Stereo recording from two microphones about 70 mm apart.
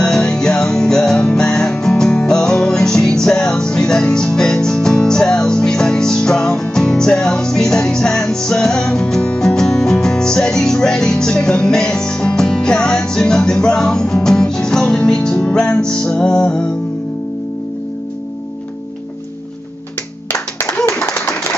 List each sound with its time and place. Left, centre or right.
0.0 s music: centre
20.6 s clapping: left